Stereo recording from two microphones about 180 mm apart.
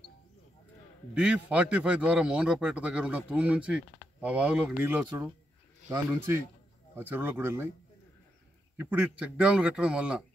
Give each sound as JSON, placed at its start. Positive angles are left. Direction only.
{"t": 1.1, "sound": "a man's voice", "side_deg": -5}
{"t": 8.7, "sound": "a man's voice", "side_deg": -10}